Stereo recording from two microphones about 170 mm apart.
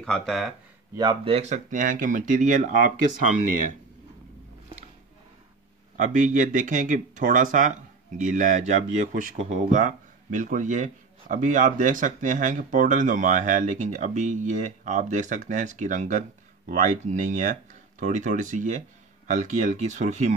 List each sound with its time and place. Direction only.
0.0 s speech: centre (ahead or behind)
0.9 s speech: 30° right (ahead or behind); by 2.9 s 50° right (ahead or behind)
5.9 s speech: 50° right (ahead or behind)